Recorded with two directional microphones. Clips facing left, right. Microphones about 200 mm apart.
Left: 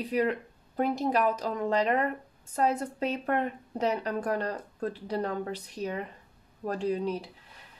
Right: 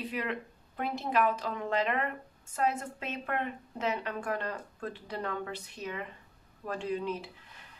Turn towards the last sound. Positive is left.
turn(degrees=35)  # may be behind; listen again after turning